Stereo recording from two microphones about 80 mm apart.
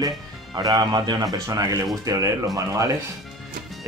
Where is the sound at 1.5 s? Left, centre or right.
Right.